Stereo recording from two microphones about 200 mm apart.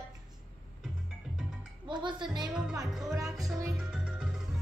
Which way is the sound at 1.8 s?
25° right (ahead or behind).